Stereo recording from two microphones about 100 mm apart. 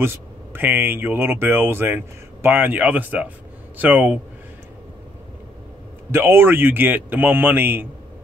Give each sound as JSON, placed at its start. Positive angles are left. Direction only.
{"t": 0.0, "sound": "speech", "side_deg": -25}
{"t": 6.1, "sound": "speech", "side_deg": -25}